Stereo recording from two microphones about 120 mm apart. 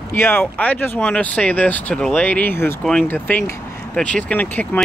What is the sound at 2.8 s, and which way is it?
Speech, 5° left (ahead or behind).